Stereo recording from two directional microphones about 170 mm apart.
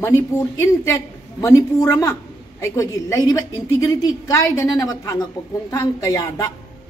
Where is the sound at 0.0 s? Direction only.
15° left (ahead or behind).